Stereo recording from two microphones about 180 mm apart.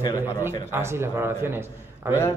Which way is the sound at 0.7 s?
15° right (ahead or behind).